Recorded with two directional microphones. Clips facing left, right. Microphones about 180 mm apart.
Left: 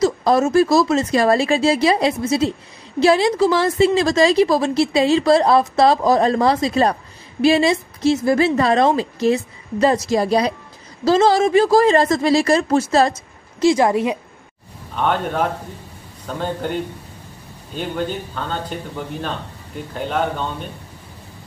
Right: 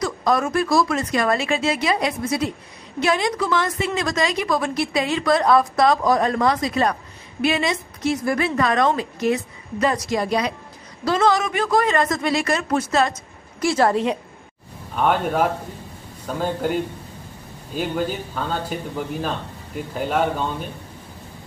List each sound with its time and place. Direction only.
0.0 s a woman's voice: 25° left (ahead or behind)
13.6 s a woman's voice: 15° left (ahead or behind)
15.0 s a man's voice: 5° right (ahead or behind)